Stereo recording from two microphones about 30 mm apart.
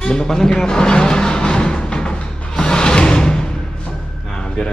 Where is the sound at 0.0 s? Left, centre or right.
Left.